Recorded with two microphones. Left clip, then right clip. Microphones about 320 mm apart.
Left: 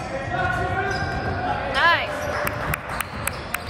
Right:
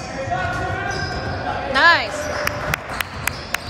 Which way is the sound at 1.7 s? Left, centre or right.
Right.